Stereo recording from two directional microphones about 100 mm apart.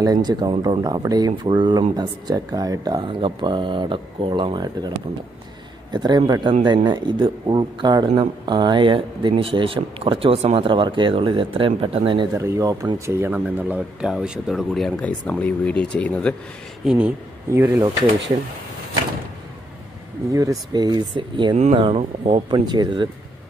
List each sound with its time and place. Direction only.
0.0 s speech: 40° right (ahead or behind)
3.1 s speech: 60° right (ahead or behind)
12.4 s speech: 25° right (ahead or behind)
14.0 s speech: 5° right (ahead or behind)
15.0 s speech: 15° left (ahead or behind)
16.8 s speech: 5° right (ahead or behind)
17.6 s speech: 20° right (ahead or behind)
20.2 s speech: 35° right (ahead or behind)
21.9 s speech: 90° right
22.5 s speech: 45° right (ahead or behind)